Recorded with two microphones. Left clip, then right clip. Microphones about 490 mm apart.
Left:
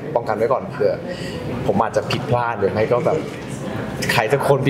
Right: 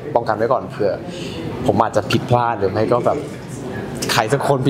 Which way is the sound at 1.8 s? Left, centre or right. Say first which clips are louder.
Right 2 dB; right.